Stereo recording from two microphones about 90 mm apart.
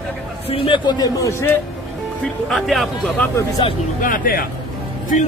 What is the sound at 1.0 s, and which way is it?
Speech, 40° left (ahead or behind).